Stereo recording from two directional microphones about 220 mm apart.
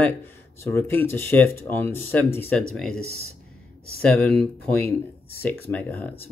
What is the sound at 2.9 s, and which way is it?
Speech, 40° left (ahead or behind).